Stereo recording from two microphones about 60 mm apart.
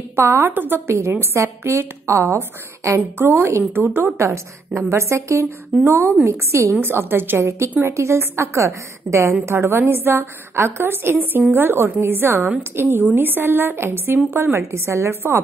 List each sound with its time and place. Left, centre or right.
0.1 s a woman's voice: right
0.5 s speech: right
1.2 s a woman's voice: right
3.2 s speech: right
4.2 s a woman's voice: right
7.4 s a woman's voice: right